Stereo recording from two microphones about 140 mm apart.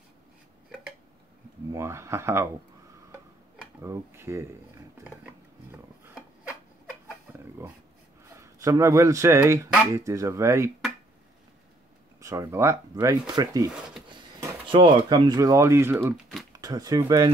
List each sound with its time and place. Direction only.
1.7 s speech: 20° right (ahead or behind)
3.8 s speech: 20° right (ahead or behind)
8.4 s speech: 20° right (ahead or behind)
12.2 s speech: 20° right (ahead or behind)
14.7 s speech: 35° right (ahead or behind)